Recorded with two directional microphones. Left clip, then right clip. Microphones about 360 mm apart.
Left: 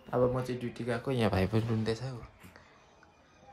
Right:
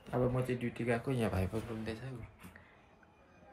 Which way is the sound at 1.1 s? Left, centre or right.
Left.